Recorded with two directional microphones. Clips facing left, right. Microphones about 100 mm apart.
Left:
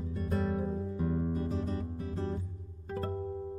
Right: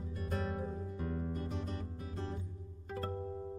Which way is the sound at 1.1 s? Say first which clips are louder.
Left 7 dB; 15° left (ahead or behind).